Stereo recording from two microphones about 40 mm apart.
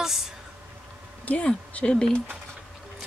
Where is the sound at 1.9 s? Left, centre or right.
Left.